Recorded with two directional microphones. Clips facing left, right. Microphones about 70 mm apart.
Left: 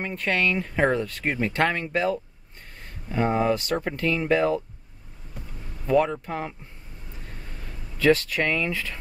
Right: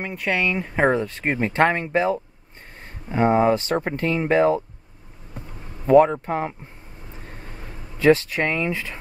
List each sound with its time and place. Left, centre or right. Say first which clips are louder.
0.0 s speech: right 1 dB; centre; by 4.6 s right
5.9 s speech: right 7 dB; right
7.2 s a sound: right 3 dB; right